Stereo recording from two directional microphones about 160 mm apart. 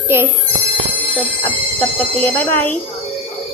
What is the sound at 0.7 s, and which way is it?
Music, 5° left (ahead or behind).